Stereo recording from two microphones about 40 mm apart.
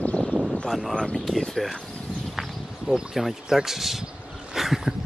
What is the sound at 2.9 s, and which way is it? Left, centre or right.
Speech, centre.